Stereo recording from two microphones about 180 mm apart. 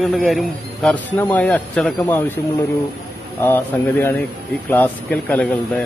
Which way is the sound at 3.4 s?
10° left (ahead or behind).